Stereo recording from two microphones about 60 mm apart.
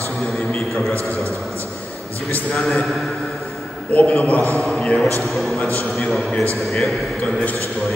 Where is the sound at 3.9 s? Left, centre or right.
Left.